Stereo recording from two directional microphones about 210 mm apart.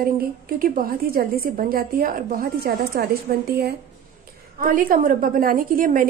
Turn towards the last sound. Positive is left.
turn(degrees=-40)  # may be behind; listen again after turning